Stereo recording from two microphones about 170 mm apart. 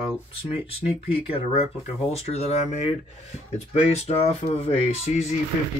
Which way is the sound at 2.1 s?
40° left (ahead or behind).